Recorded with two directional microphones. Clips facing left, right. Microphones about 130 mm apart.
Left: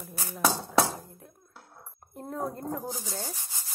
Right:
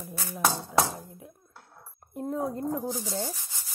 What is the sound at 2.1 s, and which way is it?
Speech, centre (ahead or behind).